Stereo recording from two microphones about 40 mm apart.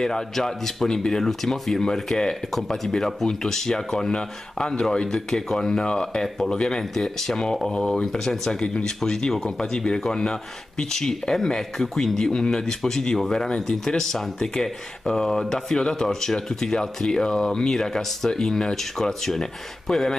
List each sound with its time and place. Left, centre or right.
0.0 s speech: centre